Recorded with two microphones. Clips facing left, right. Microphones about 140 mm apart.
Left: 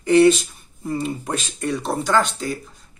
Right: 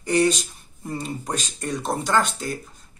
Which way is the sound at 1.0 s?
5° left (ahead or behind).